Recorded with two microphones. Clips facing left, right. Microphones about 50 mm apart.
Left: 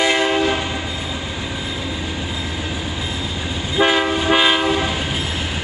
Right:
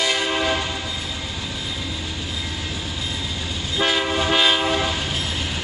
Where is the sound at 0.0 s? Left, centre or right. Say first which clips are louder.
Left 5 dB; left.